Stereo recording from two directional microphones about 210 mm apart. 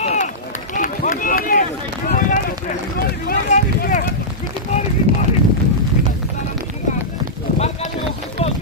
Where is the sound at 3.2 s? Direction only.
40° left (ahead or behind).